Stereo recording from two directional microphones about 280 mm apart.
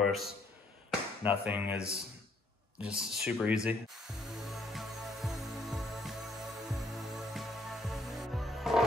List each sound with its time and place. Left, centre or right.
0.0 s speech: centre
3.6 s music: centre